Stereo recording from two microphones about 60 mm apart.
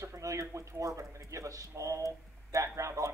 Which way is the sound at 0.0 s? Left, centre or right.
Right.